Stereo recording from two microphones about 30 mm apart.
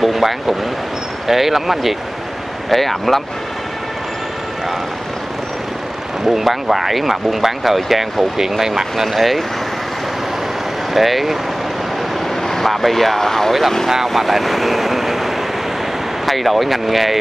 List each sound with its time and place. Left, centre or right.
0.0 s speech: centre
2.7 s speech: centre
6.2 s speech: centre
8.4 s speech: centre
8.9 s speech: centre
10.9 s speech: centre
12.4 s speech: centre
13.5 s speech: centre